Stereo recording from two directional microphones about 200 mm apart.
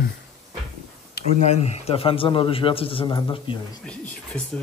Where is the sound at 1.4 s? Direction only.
35° left (ahead or behind).